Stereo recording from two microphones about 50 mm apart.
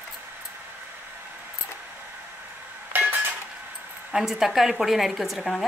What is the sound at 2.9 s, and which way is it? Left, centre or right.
Dishes, right.